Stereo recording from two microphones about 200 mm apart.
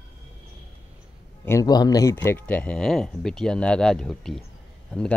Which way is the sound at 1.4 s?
15° left (ahead or behind).